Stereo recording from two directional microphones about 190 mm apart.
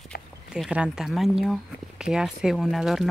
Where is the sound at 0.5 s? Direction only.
5° right (ahead or behind).